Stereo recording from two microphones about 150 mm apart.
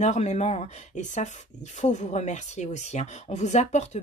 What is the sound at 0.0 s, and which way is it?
Speech, 50° left (ahead or behind).